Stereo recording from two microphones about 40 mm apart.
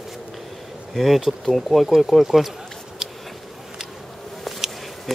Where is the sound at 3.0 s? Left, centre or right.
Centre.